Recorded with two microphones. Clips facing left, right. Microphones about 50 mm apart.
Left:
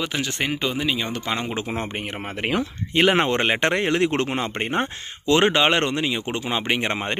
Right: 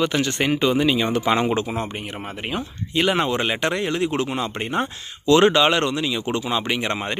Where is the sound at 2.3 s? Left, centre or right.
Left.